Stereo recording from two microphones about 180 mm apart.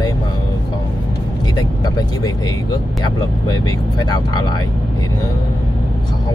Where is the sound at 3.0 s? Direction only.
20° left (ahead or behind).